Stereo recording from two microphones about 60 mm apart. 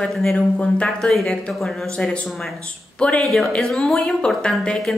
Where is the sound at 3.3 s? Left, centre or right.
Centre.